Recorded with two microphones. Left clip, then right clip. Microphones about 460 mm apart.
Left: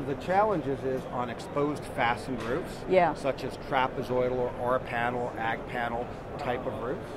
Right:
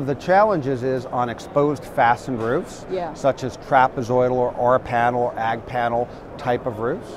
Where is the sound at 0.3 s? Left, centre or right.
Right.